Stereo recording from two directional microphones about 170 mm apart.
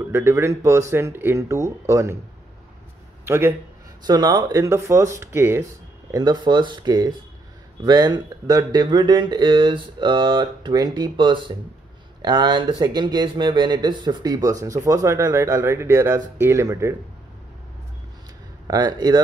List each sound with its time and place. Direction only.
0.0 s speech: 15° right (ahead or behind)
3.3 s speech: 15° right (ahead or behind)
6.1 s speech: 25° right (ahead or behind)
18.7 s speech: 25° right (ahead or behind)